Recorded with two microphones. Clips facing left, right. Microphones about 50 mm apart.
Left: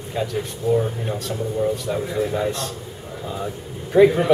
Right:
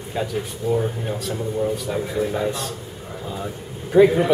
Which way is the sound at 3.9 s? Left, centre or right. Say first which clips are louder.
Even; centre.